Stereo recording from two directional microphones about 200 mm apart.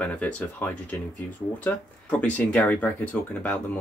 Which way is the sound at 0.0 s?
5° left (ahead or behind).